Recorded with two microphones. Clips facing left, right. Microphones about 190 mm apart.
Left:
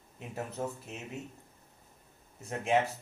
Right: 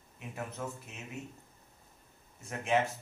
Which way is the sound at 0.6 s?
35° left (ahead or behind).